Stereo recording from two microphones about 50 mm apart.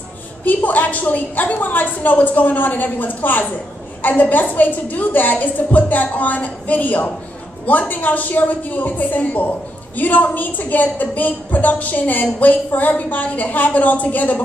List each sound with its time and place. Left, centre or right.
0.5 s a woman's voice: left